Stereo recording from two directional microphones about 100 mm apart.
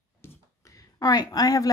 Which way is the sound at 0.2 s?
35° left (ahead or behind).